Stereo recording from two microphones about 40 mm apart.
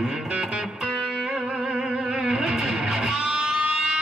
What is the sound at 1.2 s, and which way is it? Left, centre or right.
Music, centre.